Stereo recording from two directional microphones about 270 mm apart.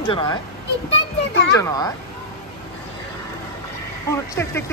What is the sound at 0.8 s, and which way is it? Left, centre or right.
Speech, left.